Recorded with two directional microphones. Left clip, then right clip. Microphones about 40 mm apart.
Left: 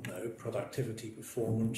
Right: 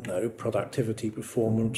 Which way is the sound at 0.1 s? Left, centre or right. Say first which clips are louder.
Right 11 dB; right.